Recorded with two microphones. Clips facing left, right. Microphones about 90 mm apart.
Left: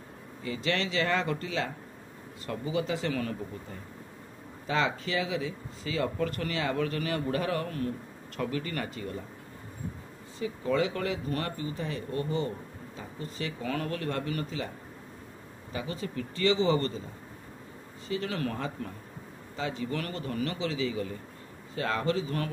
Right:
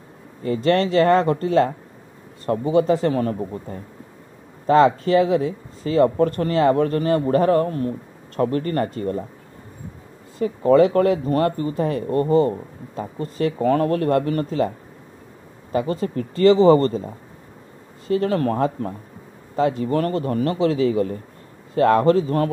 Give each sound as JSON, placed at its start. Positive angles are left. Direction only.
{"t": 0.4, "sound": "speech", "side_deg": -45}
{"t": 8.4, "sound": "speech", "side_deg": -45}
{"t": 10.4, "sound": "speech", "side_deg": -50}
{"t": 15.7, "sound": "speech", "side_deg": -45}